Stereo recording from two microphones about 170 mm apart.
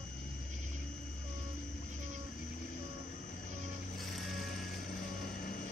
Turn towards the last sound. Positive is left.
turn(degrees=55)  # may be behind; listen again after turning